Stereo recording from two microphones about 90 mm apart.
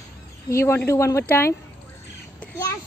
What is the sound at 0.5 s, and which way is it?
Speech, 30° left (ahead or behind).